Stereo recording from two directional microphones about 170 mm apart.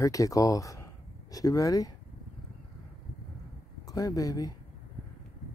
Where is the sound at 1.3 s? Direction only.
20° left (ahead or behind).